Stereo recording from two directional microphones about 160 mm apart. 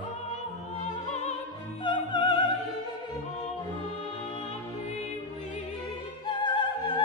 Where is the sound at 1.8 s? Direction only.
30° left (ahead or behind).